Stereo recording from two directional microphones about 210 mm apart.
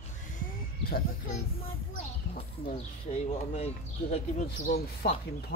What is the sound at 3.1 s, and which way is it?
Speech, 30° left (ahead or behind).